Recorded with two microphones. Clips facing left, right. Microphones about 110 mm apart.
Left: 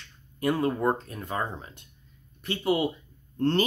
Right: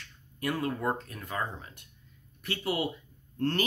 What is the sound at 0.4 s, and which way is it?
Speech, 25° left (ahead or behind).